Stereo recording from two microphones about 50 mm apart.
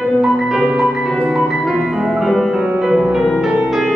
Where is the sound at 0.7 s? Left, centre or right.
Centre.